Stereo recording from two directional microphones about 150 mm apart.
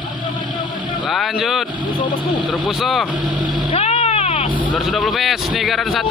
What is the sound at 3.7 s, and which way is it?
Vehicle, 45° left (ahead or behind).